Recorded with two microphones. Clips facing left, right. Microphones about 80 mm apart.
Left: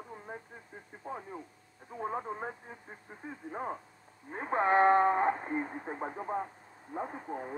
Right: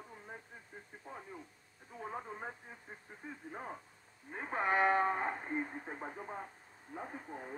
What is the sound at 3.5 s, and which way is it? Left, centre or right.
Speech, left.